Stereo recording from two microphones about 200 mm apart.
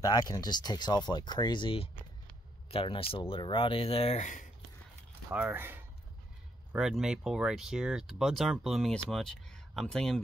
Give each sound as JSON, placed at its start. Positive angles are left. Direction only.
{"t": 0.0, "sound": "speech", "side_deg": 20}
{"t": 5.3, "sound": "speech", "side_deg": -10}